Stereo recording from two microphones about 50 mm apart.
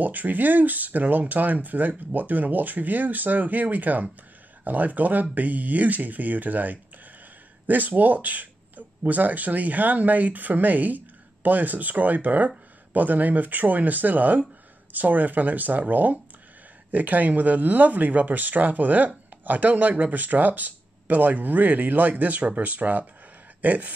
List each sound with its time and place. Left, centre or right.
0.0 s speech: right